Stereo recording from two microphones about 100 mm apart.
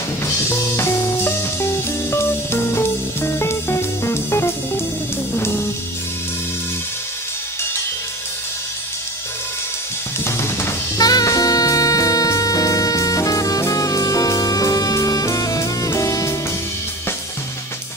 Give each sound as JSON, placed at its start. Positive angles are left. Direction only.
{"t": 0.5, "sound": "music", "side_deg": 30}
{"t": 10.2, "sound": "drum kit", "side_deg": 25}
{"t": 11.0, "sound": "music", "side_deg": 40}